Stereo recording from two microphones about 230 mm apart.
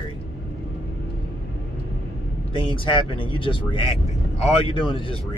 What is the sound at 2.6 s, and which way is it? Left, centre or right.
Speech, left.